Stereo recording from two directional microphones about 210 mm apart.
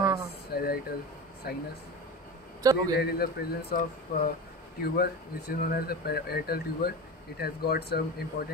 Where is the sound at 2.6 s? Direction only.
15° right (ahead or behind).